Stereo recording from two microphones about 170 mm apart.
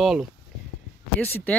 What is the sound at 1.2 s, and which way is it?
Speech, 10° left (ahead or behind).